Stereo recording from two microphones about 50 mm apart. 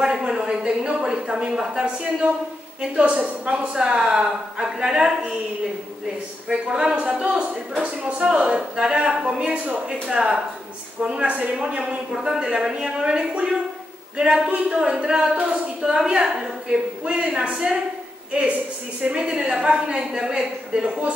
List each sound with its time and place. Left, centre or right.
0.0 s a woman's voice: centre
9.4 s a woman's voice: right
12.1 s a woman's voice: centre
18.9 s a woman's voice: right